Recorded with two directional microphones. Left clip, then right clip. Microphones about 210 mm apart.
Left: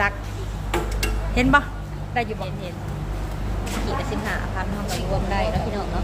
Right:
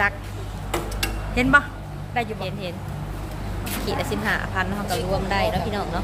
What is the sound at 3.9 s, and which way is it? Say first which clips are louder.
Speech: right 4 dB; 35° right (ahead or behind).